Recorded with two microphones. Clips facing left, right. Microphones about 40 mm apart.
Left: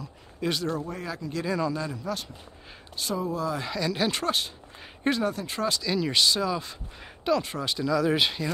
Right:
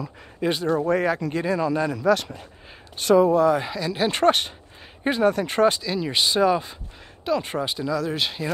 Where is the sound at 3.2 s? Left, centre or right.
Right.